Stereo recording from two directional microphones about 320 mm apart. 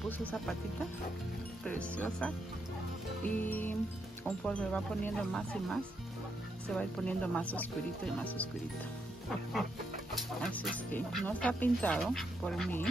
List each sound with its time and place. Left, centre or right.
0.2 s speech: centre
1.7 s speech: centre
3.3 s speech: centre
10.4 s speech: centre